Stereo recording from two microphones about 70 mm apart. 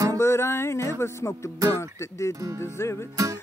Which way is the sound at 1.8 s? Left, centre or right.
Left.